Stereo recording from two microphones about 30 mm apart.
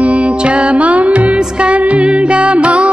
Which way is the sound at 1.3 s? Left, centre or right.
Right.